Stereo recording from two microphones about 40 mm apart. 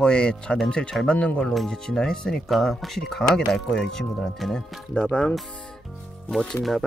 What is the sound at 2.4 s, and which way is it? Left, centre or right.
Speech, centre.